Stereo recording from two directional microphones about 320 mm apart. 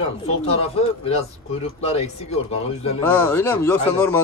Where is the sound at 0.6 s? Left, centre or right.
Centre.